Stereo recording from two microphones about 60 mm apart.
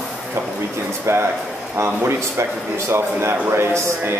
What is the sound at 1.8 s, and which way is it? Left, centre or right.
Speech, right.